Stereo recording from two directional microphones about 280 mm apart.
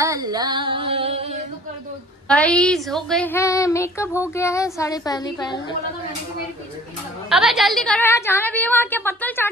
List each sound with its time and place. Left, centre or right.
0.0 s a sound: centre
2.2 s speech: centre
7.2 s speech: centre